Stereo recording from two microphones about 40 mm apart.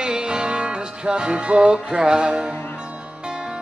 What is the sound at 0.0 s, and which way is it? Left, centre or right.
Music, right.